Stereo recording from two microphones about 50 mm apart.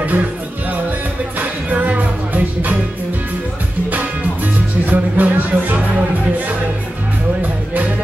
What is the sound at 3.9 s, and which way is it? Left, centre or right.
Music, right.